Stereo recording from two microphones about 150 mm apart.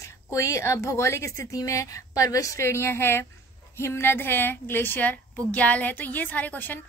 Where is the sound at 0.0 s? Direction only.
20° left (ahead or behind).